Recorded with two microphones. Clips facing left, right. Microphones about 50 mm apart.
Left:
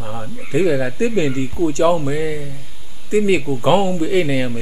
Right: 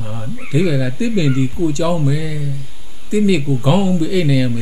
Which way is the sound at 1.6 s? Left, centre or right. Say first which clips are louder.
Left 2 dB; centre.